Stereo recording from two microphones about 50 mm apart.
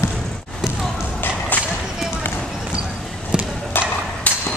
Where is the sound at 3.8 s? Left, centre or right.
Left.